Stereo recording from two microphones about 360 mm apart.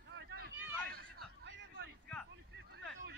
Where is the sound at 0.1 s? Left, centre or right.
Right.